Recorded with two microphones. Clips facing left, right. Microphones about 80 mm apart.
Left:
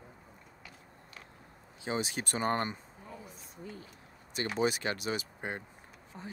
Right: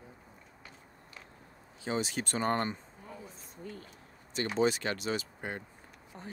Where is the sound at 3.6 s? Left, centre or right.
Right.